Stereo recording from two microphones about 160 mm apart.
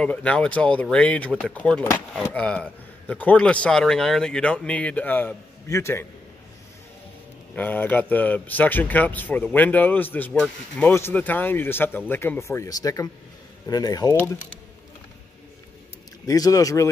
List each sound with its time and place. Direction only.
0.0 s a man's voice: 10° left (ahead or behind)
7.5 s a man's voice: 10° left (ahead or behind)
16.3 s speech: 20° left (ahead or behind)